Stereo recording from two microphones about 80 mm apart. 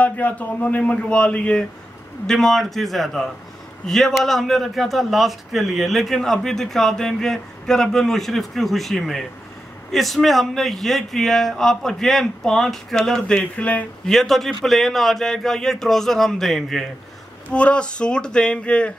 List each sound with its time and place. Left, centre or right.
0.0 s a man's voice: centre
14.0 s a man's voice: centre
17.5 s a man's voice: centre